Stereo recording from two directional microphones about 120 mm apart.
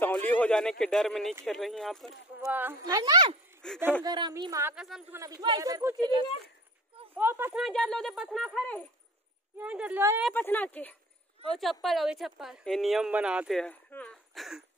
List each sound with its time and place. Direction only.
0.0 s speech: 15° left (ahead or behind)
2.4 s speech: 20° right (ahead or behind)
2.9 s speech: 30° right (ahead or behind)
3.6 s speech: 5° left (ahead or behind)
4.0 s speech: 35° right (ahead or behind)
4.7 s speech: 5° right (ahead or behind)
5.1 s speech: 30° right (ahead or behind)
7.2 s speech: 20° right (ahead or behind)
7.5 s speech: 5° left (ahead or behind)
9.6 s speech: 10° right (ahead or behind)
10.3 s speech: 15° left (ahead or behind)
11.5 s speech: centre (ahead or behind)
13.6 s speech: 15° left (ahead or behind)
14.3 s a sound: centre (ahead or behind)